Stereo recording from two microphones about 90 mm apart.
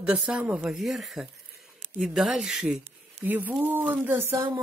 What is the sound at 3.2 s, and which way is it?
Speech, 20° right (ahead or behind).